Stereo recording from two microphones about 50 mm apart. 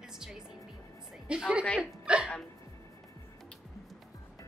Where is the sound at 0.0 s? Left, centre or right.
Centre.